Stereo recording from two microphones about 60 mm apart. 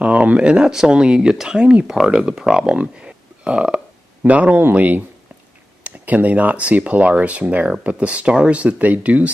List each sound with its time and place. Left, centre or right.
0.0 s speech: right
2.6 s a sound: centre
4.2 s speech: right